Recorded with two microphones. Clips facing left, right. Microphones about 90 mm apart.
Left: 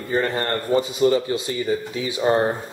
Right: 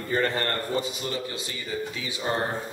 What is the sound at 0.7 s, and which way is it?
Speech, 40° left (ahead or behind).